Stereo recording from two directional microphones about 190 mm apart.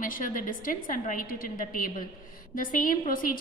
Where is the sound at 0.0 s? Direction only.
45° left (ahead or behind).